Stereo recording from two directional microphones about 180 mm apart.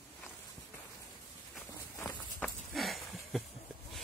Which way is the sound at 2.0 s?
10° left (ahead or behind).